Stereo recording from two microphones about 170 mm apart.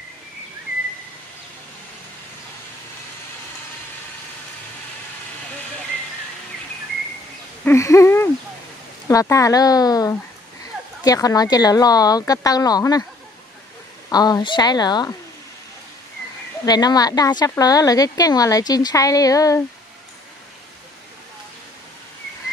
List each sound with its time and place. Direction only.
7.6 s owl: 15° left (ahead or behind)
9.0 s a woman's voice: 20° left (ahead or behind)
14.0 s a woman's voice: 20° left (ahead or behind)
16.6 s a woman's voice: 25° left (ahead or behind)